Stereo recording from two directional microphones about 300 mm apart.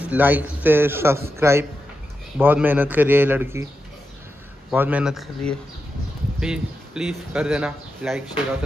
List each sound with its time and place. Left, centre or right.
0.1 s a man's voice: centre
4.6 s speech: centre